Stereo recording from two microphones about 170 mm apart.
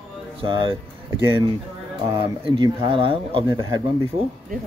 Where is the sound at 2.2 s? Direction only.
30° right (ahead or behind).